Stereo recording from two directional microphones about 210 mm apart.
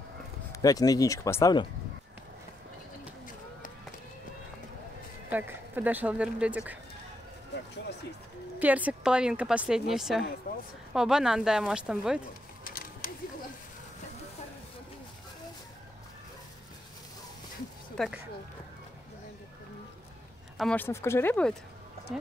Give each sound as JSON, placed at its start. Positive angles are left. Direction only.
{"t": 0.5, "sound": "speech", "side_deg": 15}
{"t": 5.3, "sound": "speech", "side_deg": -10}
{"t": 8.5, "sound": "speech", "side_deg": -5}
{"t": 10.5, "sound": "speech", "side_deg": 45}
{"t": 10.9, "sound": "speech", "side_deg": -5}
{"t": 12.6, "sound": "a sound", "side_deg": 40}
{"t": 17.9, "sound": "speech", "side_deg": 0}
{"t": 20.5, "sound": "speech", "side_deg": 5}